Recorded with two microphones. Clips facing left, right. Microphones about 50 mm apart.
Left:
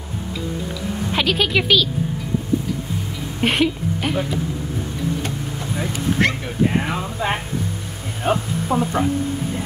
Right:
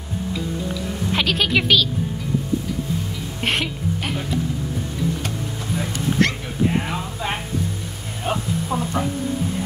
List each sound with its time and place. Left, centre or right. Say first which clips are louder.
1.1 s speech: left 1 dB; centre
3.3 s speech: left 5 dB; centre
5.8 s speech: left 1 dB; centre
8.2 s speech: left 3 dB; left